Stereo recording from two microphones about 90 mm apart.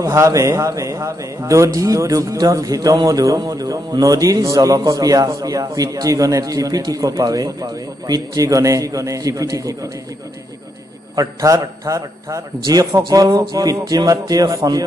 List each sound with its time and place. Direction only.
0.0 s speech: 35° right (ahead or behind)
11.1 s a man's voice: 40° right (ahead or behind)